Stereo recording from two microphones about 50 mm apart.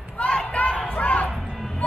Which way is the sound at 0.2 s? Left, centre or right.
Left.